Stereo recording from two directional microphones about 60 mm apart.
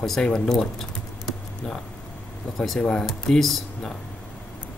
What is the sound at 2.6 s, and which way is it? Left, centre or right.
Speech, centre.